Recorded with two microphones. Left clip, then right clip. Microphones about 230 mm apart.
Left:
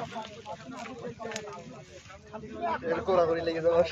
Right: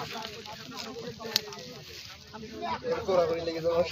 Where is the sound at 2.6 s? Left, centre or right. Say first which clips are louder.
Left 1 dB; left.